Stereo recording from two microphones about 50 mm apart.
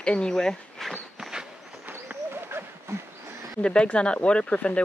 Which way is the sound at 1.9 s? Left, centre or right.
Right.